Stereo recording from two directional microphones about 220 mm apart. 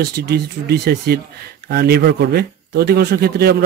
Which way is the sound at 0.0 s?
45° right (ahead or behind).